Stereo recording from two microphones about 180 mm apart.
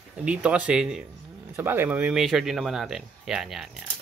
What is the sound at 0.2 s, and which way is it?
Speech, 5° right (ahead or behind).